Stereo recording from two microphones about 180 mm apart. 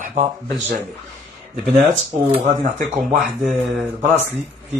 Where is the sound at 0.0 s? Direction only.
40° right (ahead or behind).